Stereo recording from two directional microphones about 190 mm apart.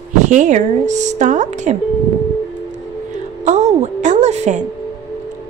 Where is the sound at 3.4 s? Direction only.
35° right (ahead or behind).